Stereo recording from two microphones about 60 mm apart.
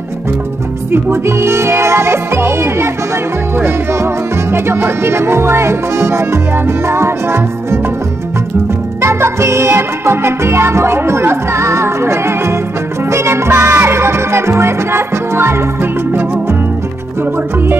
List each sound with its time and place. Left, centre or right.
0.9 s music: right
9.0 s music: right